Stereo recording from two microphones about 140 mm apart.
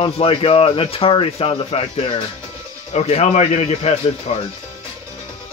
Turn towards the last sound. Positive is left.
turn(degrees=50)  # may be behind; listen again after turning